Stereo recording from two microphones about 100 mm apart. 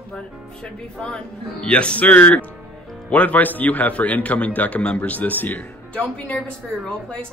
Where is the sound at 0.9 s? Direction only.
10° left (ahead or behind).